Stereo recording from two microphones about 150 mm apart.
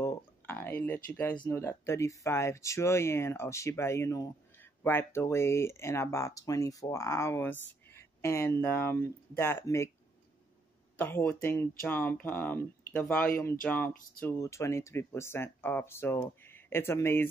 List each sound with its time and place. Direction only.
0.0 s a sound: 15° left (ahead or behind)
1.5 s speech: 15° left (ahead or behind)
11.0 s speech: 10° left (ahead or behind)